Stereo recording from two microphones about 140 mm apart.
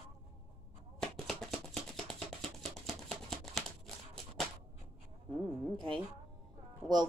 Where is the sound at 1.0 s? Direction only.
5° left (ahead or behind).